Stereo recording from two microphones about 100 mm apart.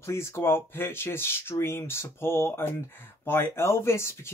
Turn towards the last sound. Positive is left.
turn(degrees=25)  # may be behind; listen again after turning